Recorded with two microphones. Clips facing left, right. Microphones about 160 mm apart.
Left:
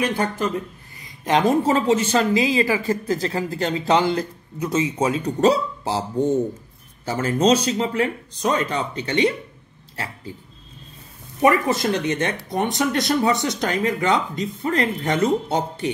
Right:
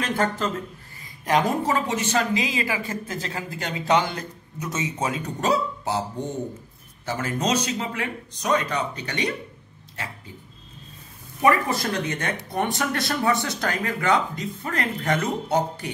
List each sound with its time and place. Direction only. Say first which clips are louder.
0.0 s speech: left 2 dB; 10° left (ahead or behind)
1.2 s a woman's voice: left 4 dB; 25° left (ahead or behind)
7.1 s speech: left 7 dB; 30° left (ahead or behind)
11.4 s speech: left 3 dB; 20° left (ahead or behind)